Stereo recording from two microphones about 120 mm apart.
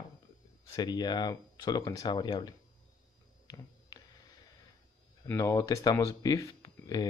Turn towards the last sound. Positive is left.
turn(degrees=35)  # may be behind; listen again after turning